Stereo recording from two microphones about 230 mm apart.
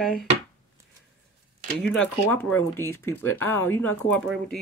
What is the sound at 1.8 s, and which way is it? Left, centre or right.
Speech, centre.